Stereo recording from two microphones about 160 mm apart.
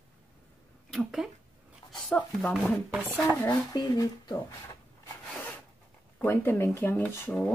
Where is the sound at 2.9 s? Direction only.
15° right (ahead or behind).